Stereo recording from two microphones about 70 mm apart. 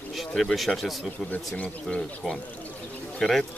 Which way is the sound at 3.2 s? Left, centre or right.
Centre.